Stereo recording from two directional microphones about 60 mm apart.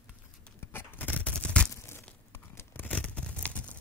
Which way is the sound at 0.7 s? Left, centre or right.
Left.